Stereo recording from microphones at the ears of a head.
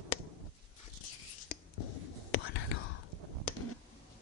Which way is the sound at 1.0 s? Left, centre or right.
Left.